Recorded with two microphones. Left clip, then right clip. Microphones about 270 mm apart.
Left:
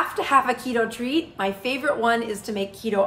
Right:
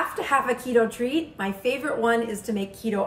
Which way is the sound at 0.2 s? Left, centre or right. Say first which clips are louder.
Left 4 dB; centre.